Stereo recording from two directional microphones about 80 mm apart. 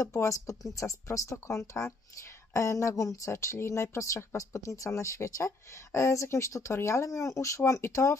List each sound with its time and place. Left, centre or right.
0.0 s speech: left